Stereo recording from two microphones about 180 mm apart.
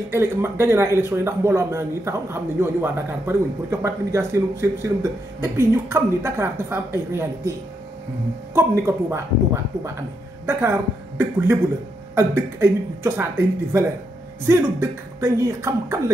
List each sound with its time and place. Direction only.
0.1 s speech: 15° right (ahead or behind)
8.5 s a woman's voice: 15° right (ahead or behind)